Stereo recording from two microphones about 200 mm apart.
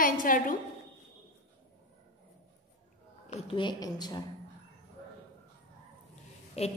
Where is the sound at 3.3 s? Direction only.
30° left (ahead or behind).